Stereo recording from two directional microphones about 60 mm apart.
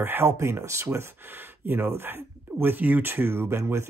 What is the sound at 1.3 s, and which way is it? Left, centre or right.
Speech, right.